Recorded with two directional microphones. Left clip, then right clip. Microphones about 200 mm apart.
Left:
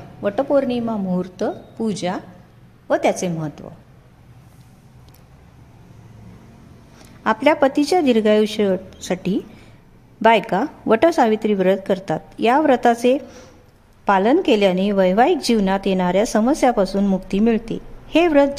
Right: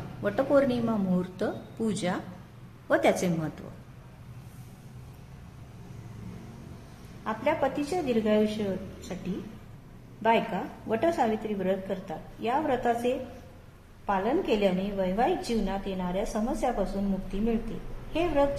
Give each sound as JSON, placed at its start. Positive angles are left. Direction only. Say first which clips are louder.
{"t": 0.2, "sound": "speech", "louder": "left 6 dB", "side_deg": 25}
{"t": 7.2, "sound": "a woman's voice", "louder": "left 12 dB", "side_deg": 55}
{"t": 10.2, "sound": "a woman's voice", "louder": "left 11 dB", "side_deg": 50}
{"t": 18.1, "sound": "a woman's voice", "louder": "left 11 dB", "side_deg": 50}